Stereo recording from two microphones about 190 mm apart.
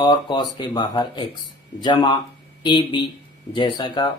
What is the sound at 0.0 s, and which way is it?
Speech, 25° left (ahead or behind).